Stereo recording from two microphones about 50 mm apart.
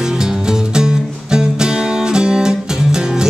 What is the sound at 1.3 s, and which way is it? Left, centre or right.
Music, centre.